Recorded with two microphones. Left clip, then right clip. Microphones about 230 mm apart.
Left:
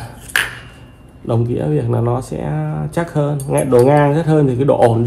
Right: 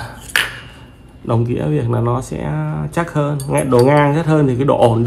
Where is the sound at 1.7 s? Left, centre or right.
Centre.